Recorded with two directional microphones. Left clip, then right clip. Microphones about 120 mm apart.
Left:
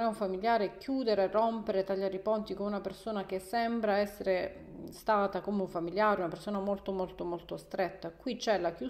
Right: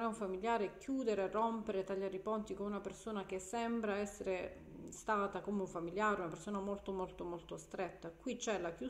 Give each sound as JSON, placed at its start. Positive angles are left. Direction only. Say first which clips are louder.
{"t": 0.2, "sound": "speech", "louder": "left 8 dB", "side_deg": 45}